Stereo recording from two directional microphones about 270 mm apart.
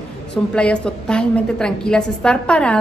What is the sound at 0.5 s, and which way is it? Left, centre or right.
A woman's voice, centre.